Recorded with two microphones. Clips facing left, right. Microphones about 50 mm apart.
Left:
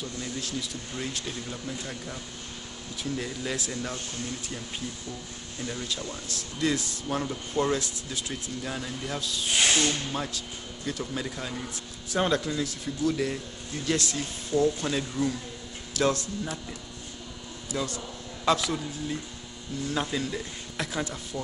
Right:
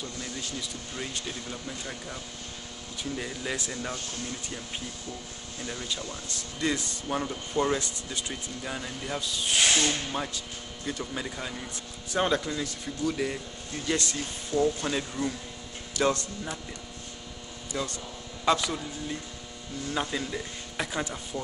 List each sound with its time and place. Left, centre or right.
0.2 s speech: centre
5.6 s speech: centre
17.7 s a man's voice: centre